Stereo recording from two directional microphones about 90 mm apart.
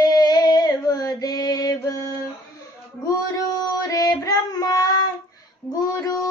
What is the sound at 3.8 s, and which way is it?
Female singing, 40° left (ahead or behind).